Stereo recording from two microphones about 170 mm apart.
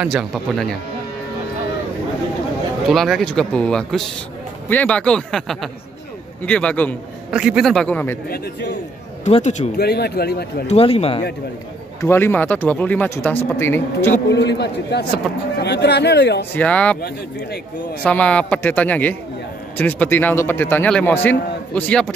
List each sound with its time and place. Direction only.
0.0 s speech: centre (ahead or behind)
2.9 s a man's voice: centre (ahead or behind)
7.2 s speech: 5° right (ahead or behind)
9.2 s a man's voice: 45° left (ahead or behind)
9.8 s speech: 70° left (ahead or behind)
10.7 s speech: 35° left (ahead or behind)
12.0 s a man's voice: 15° left (ahead or behind)
14.3 s speech: 90° left
16.5 s a man's voice: 10° left (ahead or behind)
18.0 s a man's voice: 5° left (ahead or behind)